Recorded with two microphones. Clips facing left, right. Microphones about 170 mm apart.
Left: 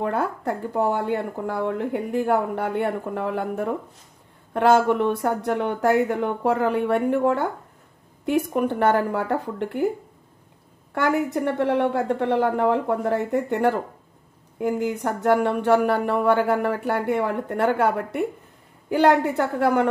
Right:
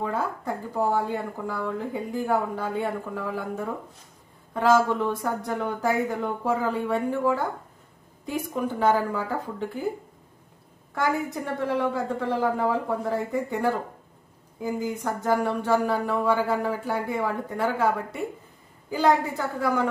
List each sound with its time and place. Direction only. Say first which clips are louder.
0.0 s a woman's voice: left 4 dB; 65° left (ahead or behind)
11.0 s a woman's voice: left 5 dB; 65° left (ahead or behind)